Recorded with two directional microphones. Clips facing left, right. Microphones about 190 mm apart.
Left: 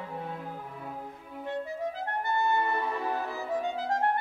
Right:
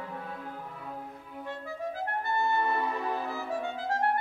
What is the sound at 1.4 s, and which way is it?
Clarinet, 20° left (ahead or behind).